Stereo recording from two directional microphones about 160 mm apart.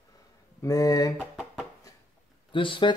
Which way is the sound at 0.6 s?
20° left (ahead or behind).